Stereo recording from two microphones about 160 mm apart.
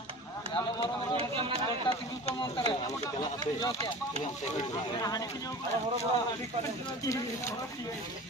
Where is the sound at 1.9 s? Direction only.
30° left (ahead or behind).